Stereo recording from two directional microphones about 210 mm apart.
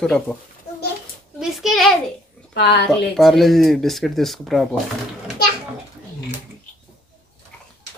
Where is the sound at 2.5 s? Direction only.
55° left (ahead or behind).